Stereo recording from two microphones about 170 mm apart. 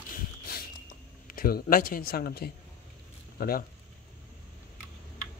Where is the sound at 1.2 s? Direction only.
60° left (ahead or behind).